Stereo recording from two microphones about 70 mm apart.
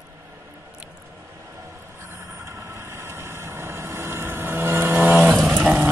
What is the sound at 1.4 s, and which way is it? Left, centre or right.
Vehicle, right.